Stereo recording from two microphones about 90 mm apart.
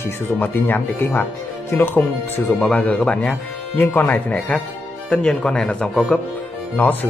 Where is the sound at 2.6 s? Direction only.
15° left (ahead or behind).